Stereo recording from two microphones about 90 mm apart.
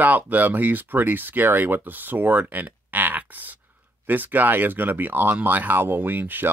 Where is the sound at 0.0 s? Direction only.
20° right (ahead or behind).